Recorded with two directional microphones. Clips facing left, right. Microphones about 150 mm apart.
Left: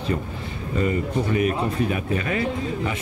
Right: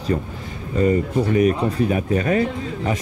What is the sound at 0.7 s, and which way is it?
Speech, 40° right (ahead or behind).